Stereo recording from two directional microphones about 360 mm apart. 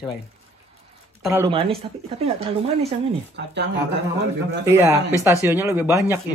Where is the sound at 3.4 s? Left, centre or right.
Right.